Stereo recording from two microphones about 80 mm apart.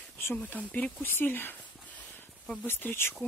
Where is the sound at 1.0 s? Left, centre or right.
Left.